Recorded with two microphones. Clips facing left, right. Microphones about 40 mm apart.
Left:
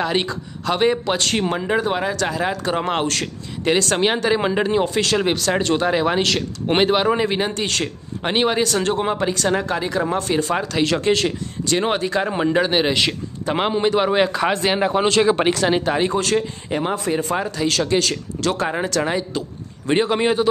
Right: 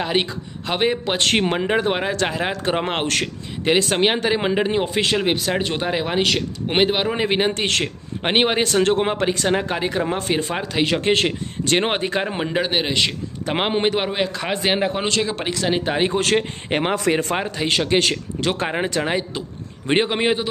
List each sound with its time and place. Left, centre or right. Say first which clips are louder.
0.0 s a man's voice: left 1 dB; centre; by 3.3 s right
3.6 s speech: even; right
7.2 s a man's voice: right 1 dB; right
10.7 s speech: left 1 dB; right
11.0 s a man's voice: even; right
12.3 s speech: left 4 dB; centre
13.5 s a man's voice: left 1 dB; right
14.1 s speech: left 6 dB; centre
14.5 s speech: left 2 dB; centre
15.2 s speech: left 8 dB; left
15.8 s speech: left 1 dB; right
16.2 s speech: right 1 dB; right
17.4 s speech: left 1 dB; right